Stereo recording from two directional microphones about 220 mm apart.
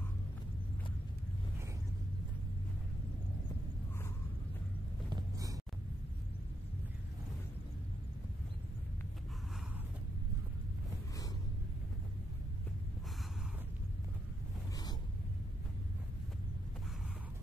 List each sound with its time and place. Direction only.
5.1 s vehicle: 15° right (ahead or behind)